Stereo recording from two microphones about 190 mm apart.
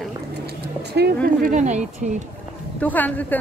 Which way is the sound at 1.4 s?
40° right (ahead or behind).